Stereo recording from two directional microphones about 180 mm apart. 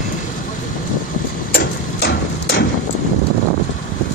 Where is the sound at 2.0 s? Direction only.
65° left (ahead or behind).